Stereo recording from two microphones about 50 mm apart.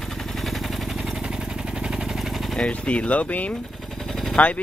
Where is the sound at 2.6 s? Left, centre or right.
Left.